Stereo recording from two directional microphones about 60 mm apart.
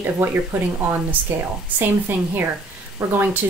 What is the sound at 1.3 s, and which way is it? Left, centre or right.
Speech, right.